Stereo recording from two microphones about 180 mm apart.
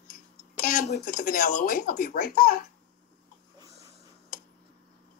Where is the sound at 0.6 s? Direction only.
50° left (ahead or behind).